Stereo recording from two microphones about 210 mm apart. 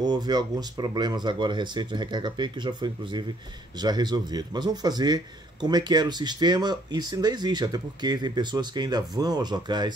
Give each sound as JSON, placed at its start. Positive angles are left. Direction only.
{"t": 0.0, "sound": "a man's voice", "side_deg": -20}